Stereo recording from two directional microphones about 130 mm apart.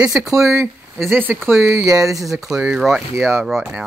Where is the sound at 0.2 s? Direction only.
25° right (ahead or behind).